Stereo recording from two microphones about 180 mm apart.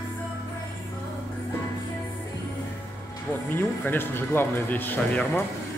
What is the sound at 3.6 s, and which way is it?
Speech, 10° left (ahead or behind).